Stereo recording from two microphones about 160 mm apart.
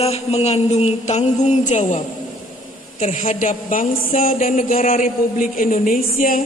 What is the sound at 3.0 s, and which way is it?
A woman's voice, 50° left (ahead or behind).